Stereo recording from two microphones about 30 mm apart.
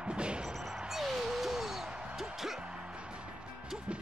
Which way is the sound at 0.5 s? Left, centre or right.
Centre.